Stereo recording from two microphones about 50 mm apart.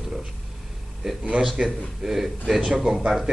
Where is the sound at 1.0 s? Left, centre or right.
Centre.